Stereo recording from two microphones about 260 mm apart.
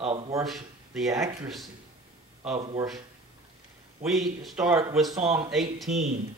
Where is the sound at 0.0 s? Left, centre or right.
Right.